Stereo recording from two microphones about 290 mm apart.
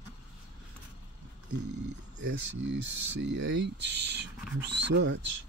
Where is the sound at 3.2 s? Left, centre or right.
Right.